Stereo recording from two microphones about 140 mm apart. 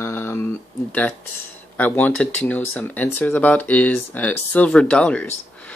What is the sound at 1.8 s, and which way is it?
Speech, 15° left (ahead or behind).